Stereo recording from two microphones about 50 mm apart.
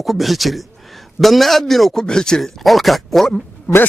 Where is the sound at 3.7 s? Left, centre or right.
Left.